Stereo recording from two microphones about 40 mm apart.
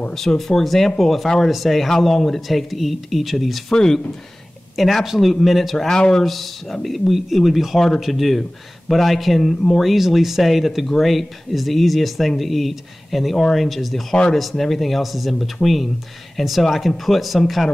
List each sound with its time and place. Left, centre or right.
0.1 s speech: centre
3.7 s speech: centre
4.7 s speech: centre
5.9 s speech: centre
6.2 s speech: centre